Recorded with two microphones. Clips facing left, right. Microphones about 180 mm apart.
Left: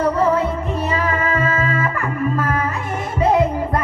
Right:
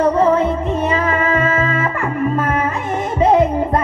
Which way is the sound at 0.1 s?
25° right (ahead or behind).